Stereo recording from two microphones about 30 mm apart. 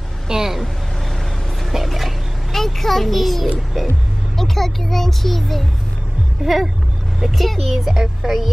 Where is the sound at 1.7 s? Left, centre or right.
Centre.